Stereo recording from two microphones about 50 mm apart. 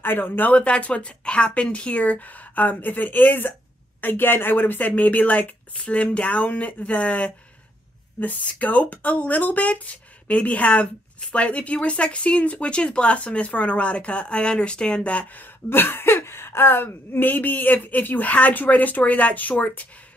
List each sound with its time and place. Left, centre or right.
0.0 s speech: left
0.6 s speech: left